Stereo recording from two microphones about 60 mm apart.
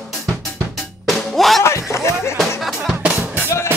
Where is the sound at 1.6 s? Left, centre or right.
Left.